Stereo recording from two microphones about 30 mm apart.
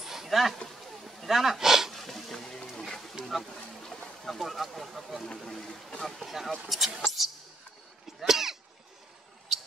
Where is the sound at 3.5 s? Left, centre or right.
Centre.